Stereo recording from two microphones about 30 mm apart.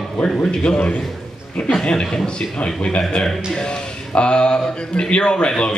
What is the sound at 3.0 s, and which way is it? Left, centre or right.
Speech, left.